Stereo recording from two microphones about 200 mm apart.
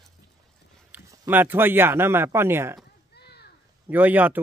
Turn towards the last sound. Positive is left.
turn(degrees=-10)  # may be behind; listen again after turning